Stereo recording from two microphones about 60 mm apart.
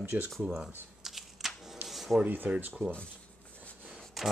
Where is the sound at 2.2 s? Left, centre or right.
Right.